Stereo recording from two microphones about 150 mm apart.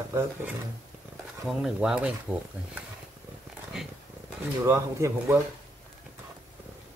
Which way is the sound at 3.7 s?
5° right (ahead or behind).